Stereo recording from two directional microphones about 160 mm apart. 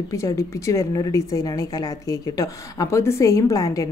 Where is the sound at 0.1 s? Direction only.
20° left (ahead or behind).